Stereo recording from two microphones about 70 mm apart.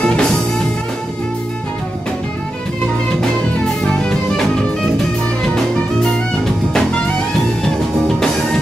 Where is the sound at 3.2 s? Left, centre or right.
Centre.